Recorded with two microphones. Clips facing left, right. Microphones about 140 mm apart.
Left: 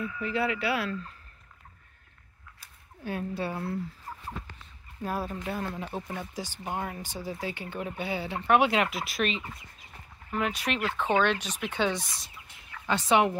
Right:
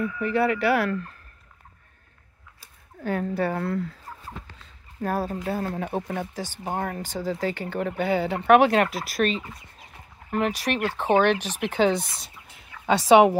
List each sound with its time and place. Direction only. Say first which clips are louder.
0.0 s speech: right 6 dB; 55° right (ahead or behind)
3.0 s speech: right 7 dB; 60° right (ahead or behind)
3.6 s fowl: right 6 dB; 90° right
5.0 s speech: right 6 dB; 40° right (ahead or behind); by 8.6 s 60° right (ahead or behind)
8.6 s speech: right 5 dB; 45° right (ahead or behind)
11.6 s speech: right 7 dB; 65° right (ahead or behind)
12.8 s speech: right 8 dB; 85° right